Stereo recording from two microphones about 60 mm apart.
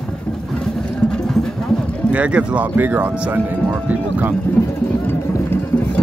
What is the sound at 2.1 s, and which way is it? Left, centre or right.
Speech, right.